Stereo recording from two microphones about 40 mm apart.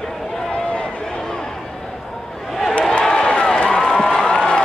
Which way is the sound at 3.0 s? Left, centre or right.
Centre.